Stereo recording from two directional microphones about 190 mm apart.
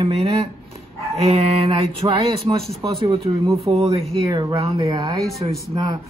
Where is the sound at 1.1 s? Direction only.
35° right (ahead or behind).